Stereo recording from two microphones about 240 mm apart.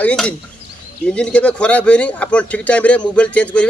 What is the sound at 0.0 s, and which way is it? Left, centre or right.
Speech, centre.